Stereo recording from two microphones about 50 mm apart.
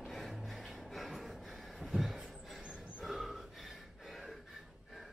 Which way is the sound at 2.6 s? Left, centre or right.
Right.